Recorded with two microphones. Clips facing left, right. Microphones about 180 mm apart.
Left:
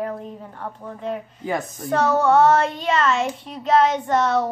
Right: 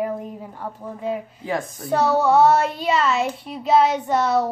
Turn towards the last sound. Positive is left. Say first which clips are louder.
# even
turn(degrees=-5)  # may be behind; listen again after turning